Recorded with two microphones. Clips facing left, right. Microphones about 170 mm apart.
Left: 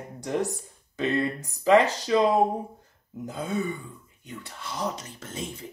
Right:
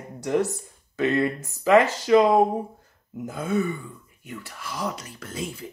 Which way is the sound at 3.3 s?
15° left (ahead or behind).